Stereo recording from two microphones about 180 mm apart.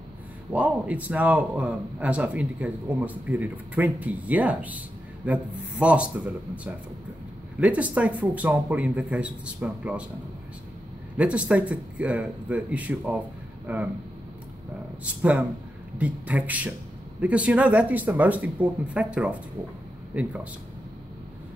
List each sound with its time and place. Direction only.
0.5 s a man's voice: 10° right (ahead or behind)
11.1 s a man's voice: 5° right (ahead or behind)
16.0 s a man's voice: 10° right (ahead or behind)